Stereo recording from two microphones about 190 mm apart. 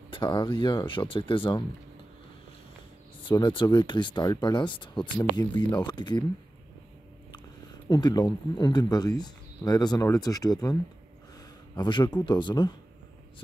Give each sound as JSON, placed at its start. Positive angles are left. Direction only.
{"t": 0.1, "sound": "speech", "side_deg": 25}
{"t": 3.3, "sound": "speech", "side_deg": 25}
{"t": 7.9, "sound": "speech", "side_deg": 20}
{"t": 11.3, "sound": "a sound", "side_deg": 20}
{"t": 12.3, "sound": "speech", "side_deg": 25}